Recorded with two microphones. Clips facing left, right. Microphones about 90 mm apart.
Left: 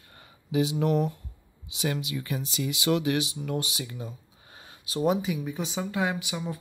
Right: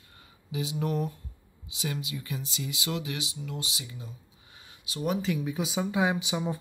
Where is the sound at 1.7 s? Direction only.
65° left (ahead or behind); by 5.0 s 40° left (ahead or behind).